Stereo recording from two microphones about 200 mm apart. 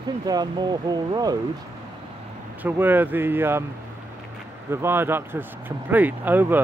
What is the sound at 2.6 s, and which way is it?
Speech, 10° right (ahead or behind).